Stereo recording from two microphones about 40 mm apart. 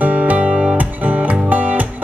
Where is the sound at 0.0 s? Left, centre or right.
Right.